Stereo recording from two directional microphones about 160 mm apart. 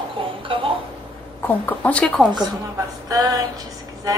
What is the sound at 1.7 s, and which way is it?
Speech, 10° left (ahead or behind).